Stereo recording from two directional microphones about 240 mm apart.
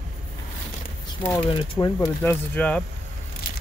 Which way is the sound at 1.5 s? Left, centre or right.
Centre.